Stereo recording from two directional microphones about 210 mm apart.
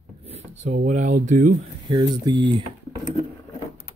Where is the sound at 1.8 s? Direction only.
20° right (ahead or behind).